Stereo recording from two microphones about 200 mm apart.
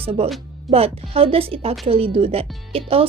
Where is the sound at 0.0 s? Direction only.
30° right (ahead or behind).